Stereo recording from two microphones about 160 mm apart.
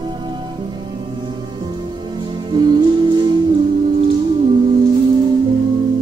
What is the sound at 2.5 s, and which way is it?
Music, 30° right (ahead or behind).